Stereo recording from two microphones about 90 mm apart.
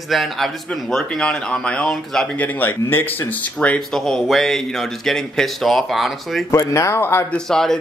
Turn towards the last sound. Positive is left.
turn(degrees=5)  # may be behind; listen again after turning